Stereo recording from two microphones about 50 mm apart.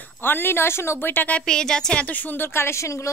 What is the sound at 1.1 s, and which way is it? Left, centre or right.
Speech, left.